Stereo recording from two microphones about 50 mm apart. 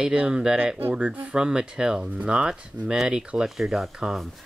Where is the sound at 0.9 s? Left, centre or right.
Right.